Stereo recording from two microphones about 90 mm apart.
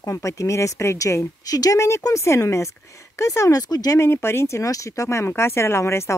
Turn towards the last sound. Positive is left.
turn(degrees=30)  # may be behind; listen again after turning